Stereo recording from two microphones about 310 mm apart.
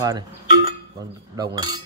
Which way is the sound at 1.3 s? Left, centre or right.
Centre.